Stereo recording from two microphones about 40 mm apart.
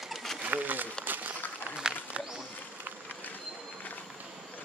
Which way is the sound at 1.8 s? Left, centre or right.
Centre.